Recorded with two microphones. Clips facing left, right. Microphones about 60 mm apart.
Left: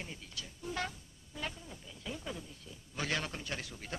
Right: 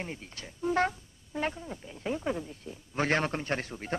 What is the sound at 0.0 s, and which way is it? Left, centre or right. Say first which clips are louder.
Speech: right 6 dB; right.